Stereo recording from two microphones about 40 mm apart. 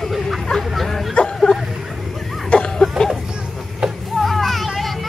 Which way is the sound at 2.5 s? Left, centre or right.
Centre.